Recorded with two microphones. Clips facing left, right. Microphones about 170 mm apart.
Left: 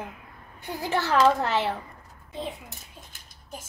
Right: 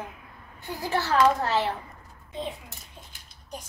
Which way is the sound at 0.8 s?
20° left (ahead or behind).